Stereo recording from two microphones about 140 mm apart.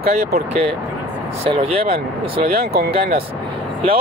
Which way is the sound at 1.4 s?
45° right (ahead or behind).